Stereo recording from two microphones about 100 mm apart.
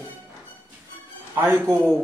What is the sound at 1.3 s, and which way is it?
Speech, 25° right (ahead or behind).